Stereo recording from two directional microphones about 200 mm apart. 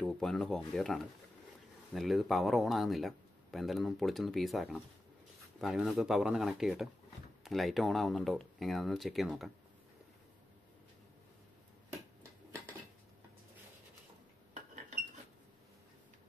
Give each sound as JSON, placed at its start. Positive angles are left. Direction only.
{"t": 0.0, "sound": "speech", "side_deg": 0}